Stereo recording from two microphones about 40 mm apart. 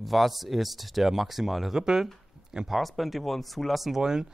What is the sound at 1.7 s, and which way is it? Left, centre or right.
Speech, centre.